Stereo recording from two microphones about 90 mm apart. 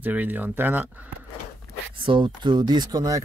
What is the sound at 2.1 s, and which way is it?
Speech, 60° right (ahead or behind).